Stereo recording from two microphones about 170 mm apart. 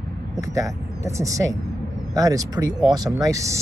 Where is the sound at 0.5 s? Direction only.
20° right (ahead or behind).